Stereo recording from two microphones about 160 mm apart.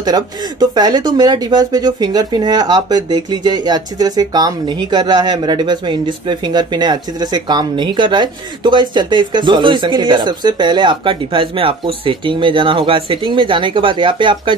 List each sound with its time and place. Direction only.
0.0 s speech: 25° right (ahead or behind)